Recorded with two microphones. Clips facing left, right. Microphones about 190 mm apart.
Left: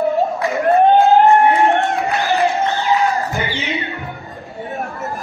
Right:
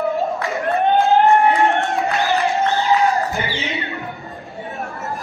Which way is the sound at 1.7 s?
15° left (ahead or behind).